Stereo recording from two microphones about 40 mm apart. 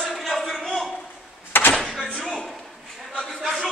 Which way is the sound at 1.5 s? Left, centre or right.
Left.